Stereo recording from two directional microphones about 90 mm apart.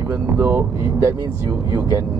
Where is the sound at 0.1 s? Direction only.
30° right (ahead or behind).